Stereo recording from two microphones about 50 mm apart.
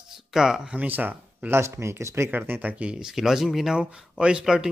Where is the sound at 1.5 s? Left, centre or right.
Right.